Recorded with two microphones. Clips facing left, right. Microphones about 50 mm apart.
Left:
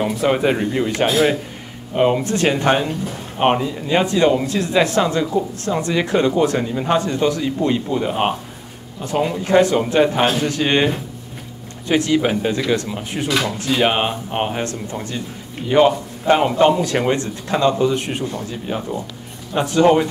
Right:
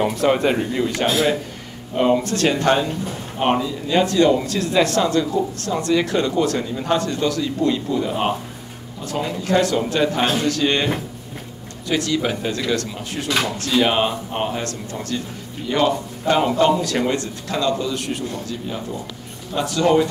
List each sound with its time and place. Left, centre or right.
0.0 s speech: centre; by 10.9 s left
11.9 s speech: left